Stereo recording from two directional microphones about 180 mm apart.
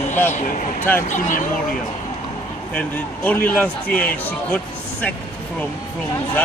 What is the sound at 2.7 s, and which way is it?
A man's voice, 10° left (ahead or behind).